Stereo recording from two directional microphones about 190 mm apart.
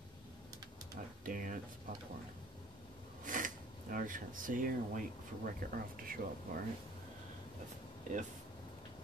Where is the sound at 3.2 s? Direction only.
45° right (ahead or behind).